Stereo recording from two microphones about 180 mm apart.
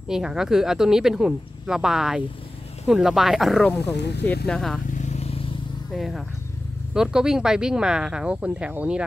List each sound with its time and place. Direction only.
0.1 s speech: 5° right (ahead or behind)
3.9 s speech: 70° left (ahead or behind)
4.5 s speech: centre (ahead or behind)
4.9 s vehicle: 40° left (ahead or behind)
5.9 s speech: centre (ahead or behind)